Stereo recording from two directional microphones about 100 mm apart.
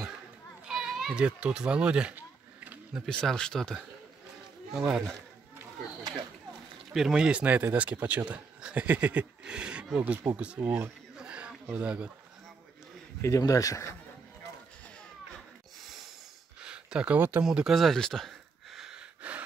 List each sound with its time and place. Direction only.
0.7 s children playing: 5° right (ahead or behind)
1.2 s speech: 10° right (ahead or behind)
3.1 s speech: 5° left (ahead or behind)
4.7 s speech: 10° right (ahead or behind)
6.9 s speech: 5° right (ahead or behind)
11.1 s a sound: 10° right (ahead or behind)
11.7 s speech: 10° right (ahead or behind)
13.2 s speech: 35° left (ahead or behind)
16.6 s a sound: 10° right (ahead or behind)